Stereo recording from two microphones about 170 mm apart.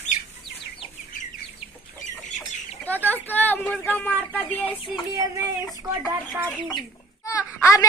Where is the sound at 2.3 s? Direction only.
10° left (ahead or behind).